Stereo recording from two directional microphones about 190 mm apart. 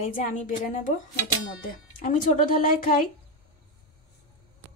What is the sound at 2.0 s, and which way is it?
A woman's voice, 45° left (ahead or behind).